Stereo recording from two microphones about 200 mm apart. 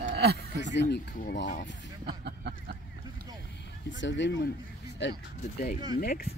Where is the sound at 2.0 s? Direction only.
55° right (ahead or behind).